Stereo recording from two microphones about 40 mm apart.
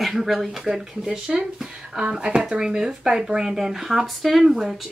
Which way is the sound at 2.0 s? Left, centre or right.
Right.